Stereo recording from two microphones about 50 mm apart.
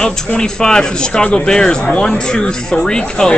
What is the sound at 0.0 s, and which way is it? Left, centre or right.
Speech, centre.